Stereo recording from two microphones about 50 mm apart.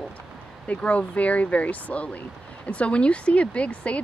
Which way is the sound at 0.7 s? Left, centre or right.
Left.